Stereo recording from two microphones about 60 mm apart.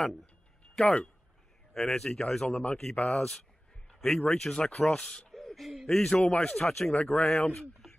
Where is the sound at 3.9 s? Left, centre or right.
Centre.